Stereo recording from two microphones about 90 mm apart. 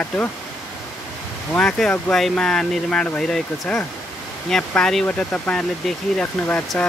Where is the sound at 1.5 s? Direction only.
10° left (ahead or behind).